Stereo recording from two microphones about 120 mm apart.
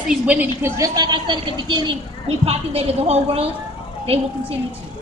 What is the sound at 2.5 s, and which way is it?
A woman's voice, 55° right (ahead or behind).